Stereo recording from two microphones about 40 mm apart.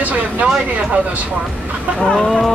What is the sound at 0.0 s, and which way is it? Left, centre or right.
Speech, right.